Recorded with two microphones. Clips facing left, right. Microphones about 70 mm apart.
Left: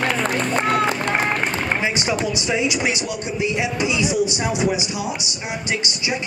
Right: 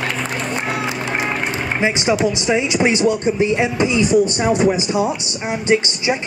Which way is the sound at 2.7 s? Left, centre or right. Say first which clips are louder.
Right 7 dB; right.